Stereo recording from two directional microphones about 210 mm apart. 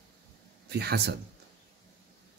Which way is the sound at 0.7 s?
50° right (ahead or behind).